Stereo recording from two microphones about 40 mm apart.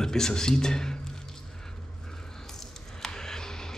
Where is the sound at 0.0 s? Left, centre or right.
Centre.